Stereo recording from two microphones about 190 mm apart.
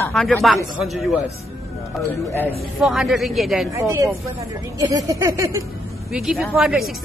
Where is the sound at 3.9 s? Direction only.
15° right (ahead or behind).